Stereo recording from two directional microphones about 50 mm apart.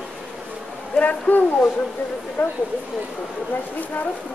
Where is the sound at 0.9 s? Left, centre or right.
Left.